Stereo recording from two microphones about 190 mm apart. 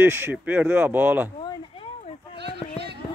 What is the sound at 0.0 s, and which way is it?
Speech, 10° right (ahead or behind).